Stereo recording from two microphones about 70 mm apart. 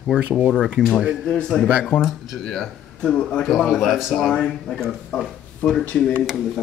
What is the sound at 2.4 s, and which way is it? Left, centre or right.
Speech, centre.